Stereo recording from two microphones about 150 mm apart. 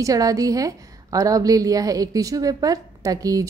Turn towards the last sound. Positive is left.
turn(degrees=-25)  # may be behind; listen again after turning